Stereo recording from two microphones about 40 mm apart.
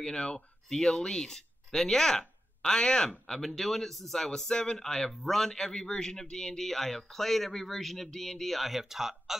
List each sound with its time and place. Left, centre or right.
0.0 s speech: centre